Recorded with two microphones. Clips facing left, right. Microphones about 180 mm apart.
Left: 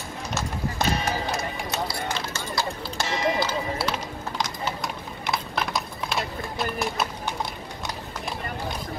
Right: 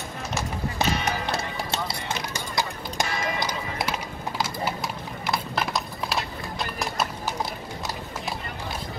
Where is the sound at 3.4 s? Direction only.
15° right (ahead or behind).